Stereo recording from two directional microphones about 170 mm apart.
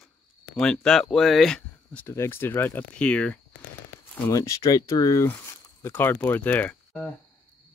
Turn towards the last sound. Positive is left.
turn(degrees=10)  # may be behind; listen again after turning